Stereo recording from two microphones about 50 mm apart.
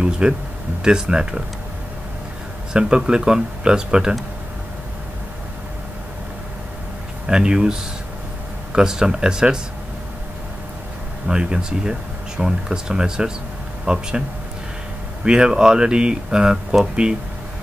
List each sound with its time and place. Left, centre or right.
0.2 s speech: centre
2.7 s speech: centre
7.2 s speech: centre
8.7 s speech: centre
11.2 s speech: centre
15.2 s speech: centre